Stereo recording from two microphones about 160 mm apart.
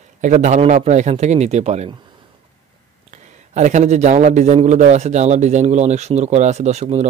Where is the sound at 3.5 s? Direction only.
50° right (ahead or behind).